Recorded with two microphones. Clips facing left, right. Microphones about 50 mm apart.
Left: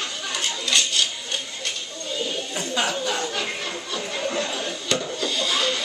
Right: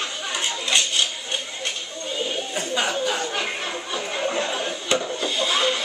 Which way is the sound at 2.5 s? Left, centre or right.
Centre.